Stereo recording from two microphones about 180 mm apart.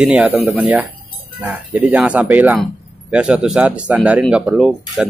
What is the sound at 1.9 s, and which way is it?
Speech, 10° right (ahead or behind).